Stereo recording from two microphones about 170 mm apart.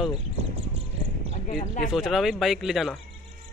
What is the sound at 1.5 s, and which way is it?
Speech, 50° left (ahead or behind).